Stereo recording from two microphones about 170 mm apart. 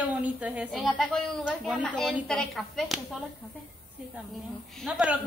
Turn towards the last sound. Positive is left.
turn(degrees=-5)  # may be behind; listen again after turning